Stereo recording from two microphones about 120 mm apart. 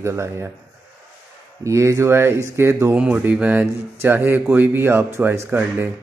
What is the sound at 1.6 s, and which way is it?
Speech, 25° right (ahead or behind).